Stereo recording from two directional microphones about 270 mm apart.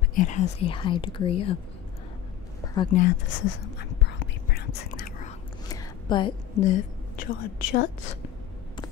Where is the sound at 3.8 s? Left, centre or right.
Left.